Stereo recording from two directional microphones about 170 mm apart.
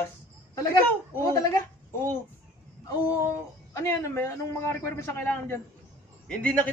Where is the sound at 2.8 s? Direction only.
20° left (ahead or behind).